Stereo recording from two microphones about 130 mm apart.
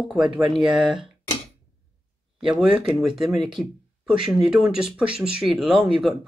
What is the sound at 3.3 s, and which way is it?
Speech, 40° right (ahead or behind).